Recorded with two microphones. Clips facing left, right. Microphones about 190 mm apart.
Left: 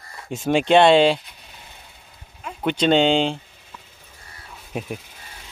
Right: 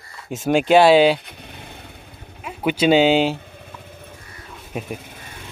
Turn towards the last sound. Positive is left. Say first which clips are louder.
# right 6 dB
turn(degrees=-55)  # may be behind; listen again after turning